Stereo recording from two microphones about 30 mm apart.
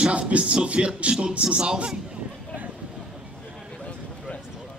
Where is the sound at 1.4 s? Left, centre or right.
Right.